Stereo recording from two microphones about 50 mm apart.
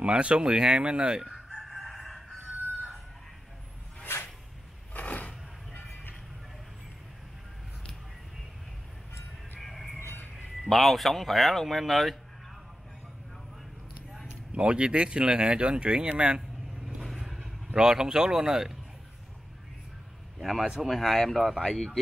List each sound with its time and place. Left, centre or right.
0.0 s speech: right
1.5 s crowing: centre
4.1 s a sound: left
4.9 s a sound: left
9.6 s music: centre
10.7 s speech: centre
14.5 s speech: right
17.2 s vehicle: centre
17.7 s speech: centre
20.3 s speech: centre
21.5 s speech: centre